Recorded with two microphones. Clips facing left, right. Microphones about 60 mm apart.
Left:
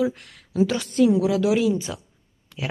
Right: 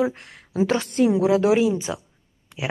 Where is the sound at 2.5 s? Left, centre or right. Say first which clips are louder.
Right 1 dB; right.